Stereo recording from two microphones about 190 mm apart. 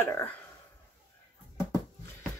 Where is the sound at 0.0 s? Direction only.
10° left (ahead or behind).